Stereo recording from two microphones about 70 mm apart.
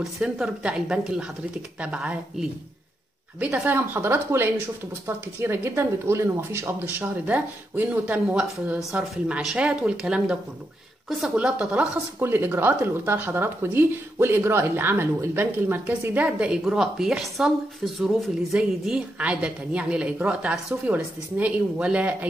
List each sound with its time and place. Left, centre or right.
0.0 s a woman's voice: centre
3.5 s a woman's voice: right
9.4 s a woman's voice: centre
11.3 s a woman's voice: centre
12.2 s speech: right
16.6 s speech: centre
18.6 s a woman's voice: centre